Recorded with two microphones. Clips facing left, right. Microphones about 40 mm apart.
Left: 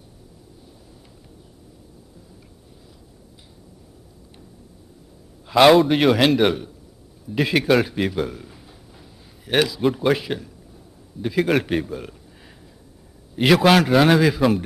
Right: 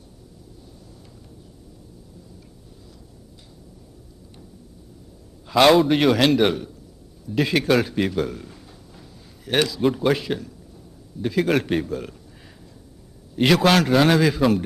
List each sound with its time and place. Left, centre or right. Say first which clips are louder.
5.5 s a man's voice: left 2 dB; centre
13.4 s a man's voice: left 2 dB; centre